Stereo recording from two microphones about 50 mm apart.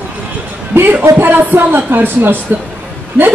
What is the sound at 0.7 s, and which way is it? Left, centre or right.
Speech, right.